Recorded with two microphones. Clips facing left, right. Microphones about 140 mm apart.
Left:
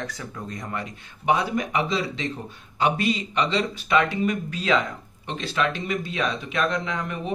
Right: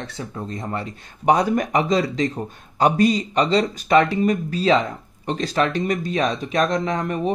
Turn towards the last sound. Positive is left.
turn(degrees=-40)  # may be behind; listen again after turning